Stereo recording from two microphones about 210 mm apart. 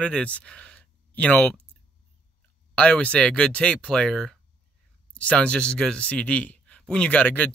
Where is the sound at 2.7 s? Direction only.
5° left (ahead or behind).